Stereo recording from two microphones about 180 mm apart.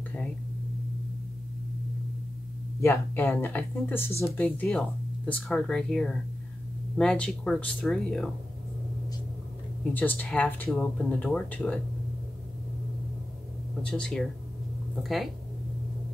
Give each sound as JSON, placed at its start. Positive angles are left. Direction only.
{"t": 2.8, "sound": "speech", "side_deg": 15}
{"t": 9.9, "sound": "speech", "side_deg": 10}
{"t": 13.8, "sound": "speech", "side_deg": 5}